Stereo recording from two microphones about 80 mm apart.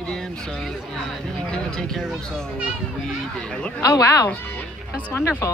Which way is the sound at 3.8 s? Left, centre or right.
Left.